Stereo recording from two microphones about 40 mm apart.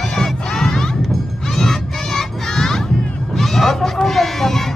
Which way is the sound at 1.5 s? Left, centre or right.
Centre.